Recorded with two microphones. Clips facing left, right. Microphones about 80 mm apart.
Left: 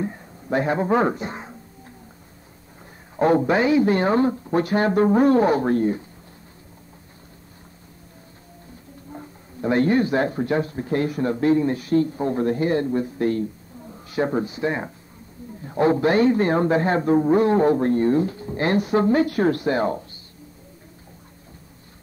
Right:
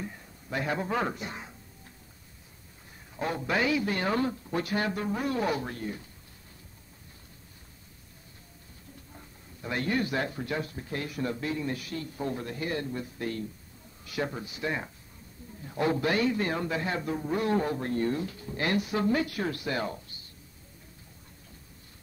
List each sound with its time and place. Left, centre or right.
0.0 s music: left
3.2 s a man's voice: left
3.4 s speech: left
9.1 s speech: left